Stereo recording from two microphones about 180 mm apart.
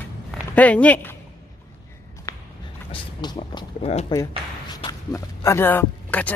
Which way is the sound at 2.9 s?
25° left (ahead or behind).